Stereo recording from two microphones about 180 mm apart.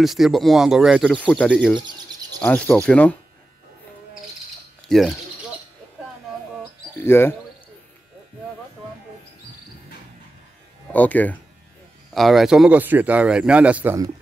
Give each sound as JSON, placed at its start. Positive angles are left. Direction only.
{"t": 0.0, "sound": "speech", "side_deg": 0}
{"t": 1.8, "sound": "bird", "side_deg": -25}
{"t": 2.4, "sound": "cricket", "side_deg": 10}
{"t": 4.8, "sound": "speech", "side_deg": 0}
{"t": 7.0, "sound": "cricket", "side_deg": 10}
{"t": 10.9, "sound": "cricket", "side_deg": 10}
{"t": 12.1, "sound": "speech", "side_deg": 0}